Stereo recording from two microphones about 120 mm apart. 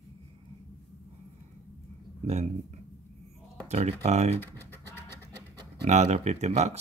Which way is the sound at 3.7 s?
60° right (ahead or behind).